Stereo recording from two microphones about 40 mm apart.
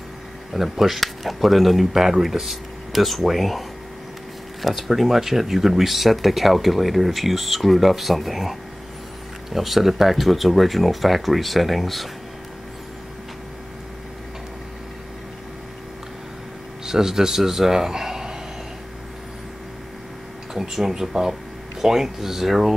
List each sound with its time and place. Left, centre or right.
0.5 s speech: centre
16.8 s speech: centre
20.5 s speech: centre